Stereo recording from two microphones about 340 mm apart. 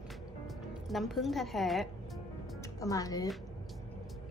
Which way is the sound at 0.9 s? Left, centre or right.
Centre.